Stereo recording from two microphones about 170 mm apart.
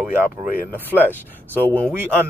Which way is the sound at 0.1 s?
10° right (ahead or behind).